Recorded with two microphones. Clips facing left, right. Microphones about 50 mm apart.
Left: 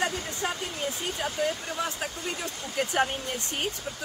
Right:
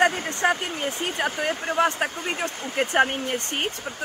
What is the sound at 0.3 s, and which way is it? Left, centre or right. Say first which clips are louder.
Speech: right 8 dB; right.